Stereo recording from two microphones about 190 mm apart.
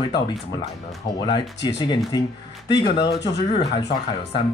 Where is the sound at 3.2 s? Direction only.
25° left (ahead or behind).